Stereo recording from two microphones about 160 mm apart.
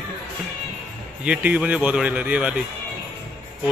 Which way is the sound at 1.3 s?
10° right (ahead or behind).